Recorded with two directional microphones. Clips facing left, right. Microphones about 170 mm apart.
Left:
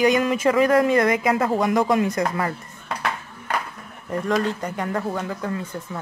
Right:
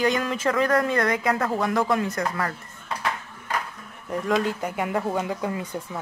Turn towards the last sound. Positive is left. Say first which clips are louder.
# even
turn(degrees=-15)  # may be behind; listen again after turning